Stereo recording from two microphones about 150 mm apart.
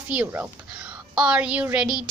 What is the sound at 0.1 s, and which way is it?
Child singing, 10° right (ahead or behind).